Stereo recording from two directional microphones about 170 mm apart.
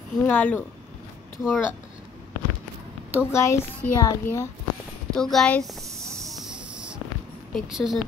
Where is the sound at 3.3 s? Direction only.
15° left (ahead or behind).